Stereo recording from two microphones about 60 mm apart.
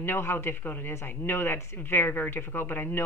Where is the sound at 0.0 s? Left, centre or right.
Left.